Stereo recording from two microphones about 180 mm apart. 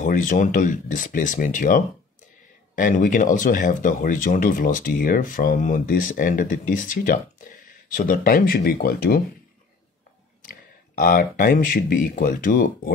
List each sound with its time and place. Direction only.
0.0 s speech: 45° left (ahead or behind)
10.4 s speech: 55° left (ahead or behind)